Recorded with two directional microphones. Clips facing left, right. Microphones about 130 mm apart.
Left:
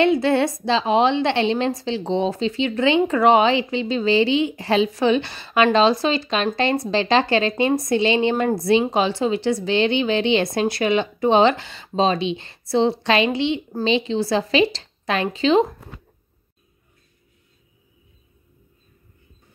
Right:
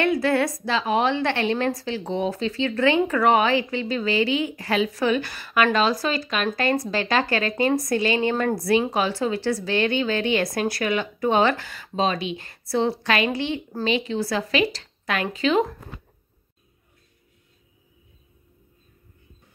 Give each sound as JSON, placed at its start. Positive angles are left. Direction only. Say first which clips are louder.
{"t": 0.0, "sound": "a woman's voice", "louder": "left 4 dB", "side_deg": 25}